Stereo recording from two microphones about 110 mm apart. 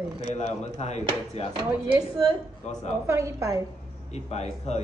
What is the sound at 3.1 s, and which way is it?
Speech, 25° right (ahead or behind).